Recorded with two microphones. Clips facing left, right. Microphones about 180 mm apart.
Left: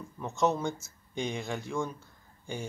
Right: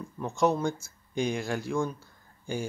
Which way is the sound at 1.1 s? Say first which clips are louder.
Right 4 dB; 5° right (ahead or behind).